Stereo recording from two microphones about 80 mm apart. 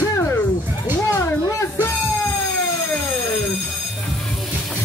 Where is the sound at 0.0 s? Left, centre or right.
Left.